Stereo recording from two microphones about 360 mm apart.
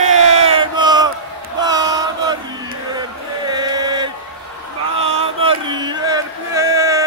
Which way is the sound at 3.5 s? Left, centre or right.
Centre.